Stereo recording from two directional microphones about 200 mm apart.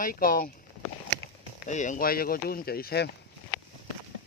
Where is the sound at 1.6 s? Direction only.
40° left (ahead or behind).